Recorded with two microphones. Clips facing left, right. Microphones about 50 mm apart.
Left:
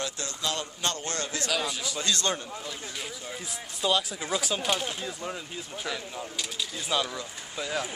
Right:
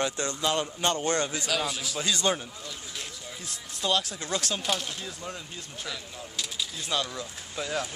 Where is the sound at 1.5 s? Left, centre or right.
Centre.